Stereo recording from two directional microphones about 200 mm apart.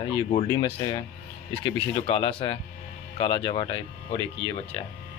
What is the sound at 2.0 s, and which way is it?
Speech, 25° left (ahead or behind).